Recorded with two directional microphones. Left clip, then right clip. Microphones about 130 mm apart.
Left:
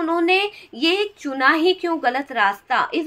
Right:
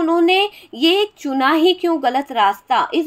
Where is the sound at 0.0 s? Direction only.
30° right (ahead or behind).